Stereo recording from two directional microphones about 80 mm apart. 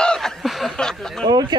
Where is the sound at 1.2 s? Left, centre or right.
Right.